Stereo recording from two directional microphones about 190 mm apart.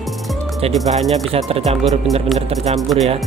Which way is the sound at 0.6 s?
30° right (ahead or behind).